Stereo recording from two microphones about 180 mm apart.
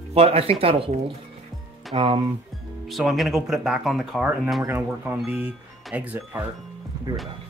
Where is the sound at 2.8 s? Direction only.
Centre (ahead or behind).